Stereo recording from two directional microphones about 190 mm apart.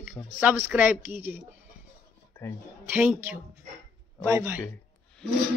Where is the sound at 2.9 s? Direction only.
10° right (ahead or behind).